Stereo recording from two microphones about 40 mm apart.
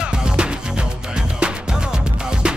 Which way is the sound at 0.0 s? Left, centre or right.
Right.